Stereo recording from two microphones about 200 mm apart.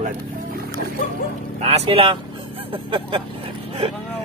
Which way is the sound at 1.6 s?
30° right (ahead or behind).